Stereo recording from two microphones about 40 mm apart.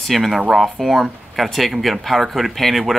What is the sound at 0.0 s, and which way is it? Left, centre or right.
Speech, centre.